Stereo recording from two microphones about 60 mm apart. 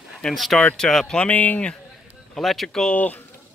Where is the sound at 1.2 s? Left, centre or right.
Left.